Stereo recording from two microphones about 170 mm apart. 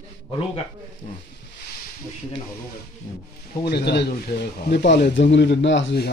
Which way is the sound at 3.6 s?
70° left (ahead or behind).